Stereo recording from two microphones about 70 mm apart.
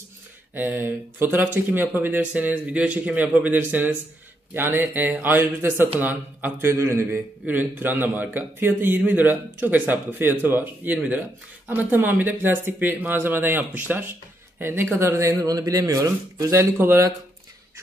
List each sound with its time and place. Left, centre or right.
0.6 s a man's voice: right
6.7 s a man's voice: right
15.0 s speech: right
16.5 s speech: right